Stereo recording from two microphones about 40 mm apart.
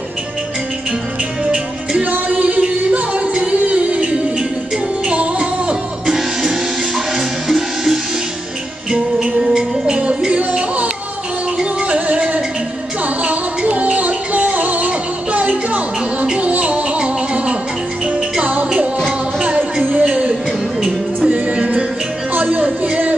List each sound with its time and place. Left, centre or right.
1.4 s music: right
2.0 s music: right
7.4 s music: centre
9.5 s music: right
11.9 s music: right
19.8 s a sound: right
21.3 s music: right